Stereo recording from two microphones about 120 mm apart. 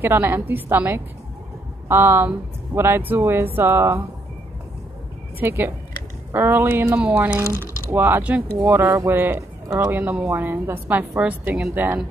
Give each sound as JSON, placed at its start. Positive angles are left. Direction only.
{"t": 0.0, "sound": "a woman's voice", "side_deg": -20}
{"t": 5.4, "sound": "a woman's voice", "side_deg": -20}